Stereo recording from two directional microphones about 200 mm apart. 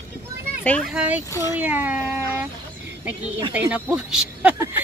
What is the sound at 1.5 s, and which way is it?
Speech, 10° right (ahead or behind).